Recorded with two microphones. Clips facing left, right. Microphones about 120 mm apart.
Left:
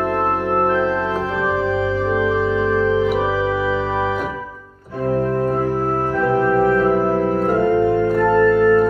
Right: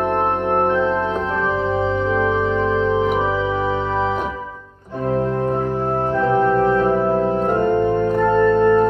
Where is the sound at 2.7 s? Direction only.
20° right (ahead or behind).